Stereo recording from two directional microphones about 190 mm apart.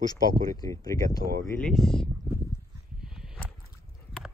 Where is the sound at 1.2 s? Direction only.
50° right (ahead or behind).